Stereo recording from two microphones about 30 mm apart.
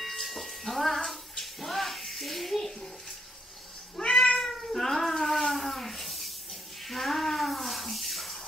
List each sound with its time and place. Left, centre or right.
0.0 s music: centre
1.4 s bathtub: centre
4.0 s cat: left
4.4 s cat: centre
5.5 s a sound: centre
6.9 s bathtub: centre